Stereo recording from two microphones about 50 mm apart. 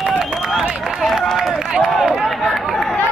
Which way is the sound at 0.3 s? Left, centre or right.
Centre.